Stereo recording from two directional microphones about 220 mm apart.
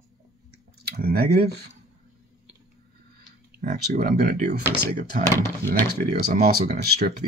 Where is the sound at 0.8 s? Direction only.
45° right (ahead or behind).